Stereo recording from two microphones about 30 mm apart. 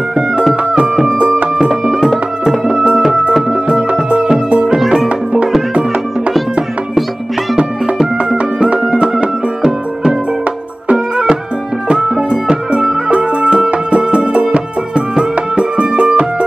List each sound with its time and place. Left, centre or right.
4.7 s music: centre
5.0 s music: right
12.0 s music: right